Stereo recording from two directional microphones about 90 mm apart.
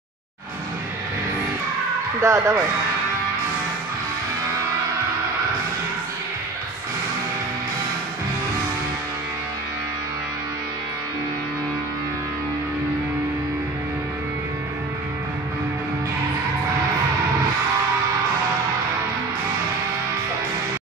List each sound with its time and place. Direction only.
2.2 s speech: 35° right (ahead or behind)